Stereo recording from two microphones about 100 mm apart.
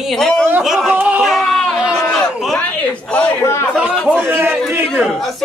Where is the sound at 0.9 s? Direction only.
15° right (ahead or behind).